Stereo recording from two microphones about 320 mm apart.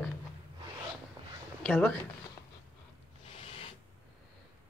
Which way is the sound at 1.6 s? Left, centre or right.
Centre.